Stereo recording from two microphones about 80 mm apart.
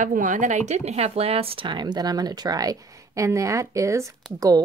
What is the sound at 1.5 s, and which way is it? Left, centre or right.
Speech, right.